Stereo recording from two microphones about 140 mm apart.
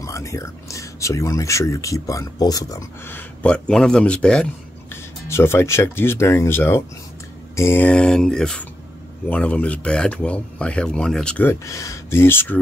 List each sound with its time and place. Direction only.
0.0 s speech: 20° left (ahead or behind)
3.1 s speech: 10° left (ahead or behind)
5.3 s speech: 20° left (ahead or behind)
11.6 s speech: 20° left (ahead or behind)